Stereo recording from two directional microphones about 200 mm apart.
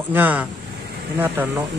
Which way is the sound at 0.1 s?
10° right (ahead or behind).